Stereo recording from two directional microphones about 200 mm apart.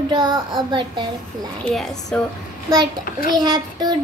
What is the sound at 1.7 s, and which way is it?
Speech, 5° left (ahead or behind).